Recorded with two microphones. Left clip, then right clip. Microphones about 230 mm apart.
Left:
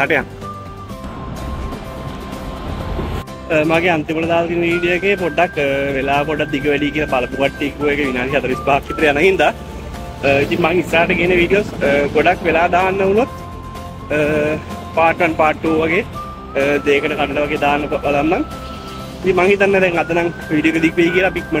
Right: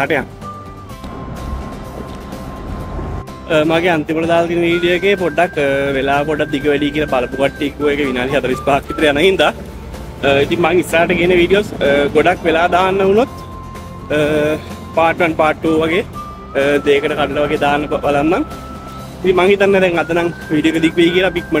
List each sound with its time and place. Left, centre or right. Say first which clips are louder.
0.0 s speech: left 1 dB; centre
3.4 s speech: right 1 dB; centre